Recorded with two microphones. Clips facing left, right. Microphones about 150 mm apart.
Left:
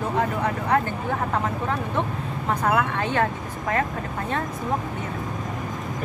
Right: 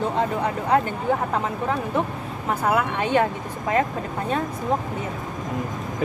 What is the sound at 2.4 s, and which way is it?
Speech, 10° right (ahead or behind).